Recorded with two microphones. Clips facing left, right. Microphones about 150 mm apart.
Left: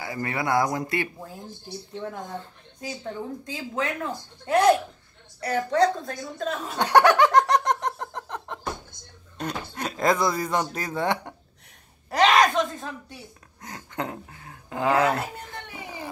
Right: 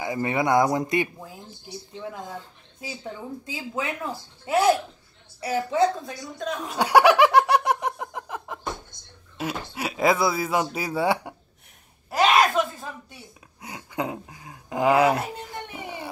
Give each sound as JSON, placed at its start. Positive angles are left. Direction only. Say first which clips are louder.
{"t": 0.0, "sound": "speech", "louder": "right 4 dB", "side_deg": -20}
{"t": 2.0, "sound": "speech", "louder": "even", "side_deg": -10}
{"t": 3.5, "sound": "a woman's voice", "louder": "left 1 dB", "side_deg": -10}
{"t": 6.6, "sound": "a sound", "louder": "right 1 dB", "side_deg": -10}
{"t": 9.4, "sound": "speech", "louder": "right 1 dB", "side_deg": -5}
{"t": 12.1, "sound": "a sound", "louder": "even", "side_deg": -5}
{"t": 15.7, "sound": "music", "louder": "right 2 dB", "side_deg": -20}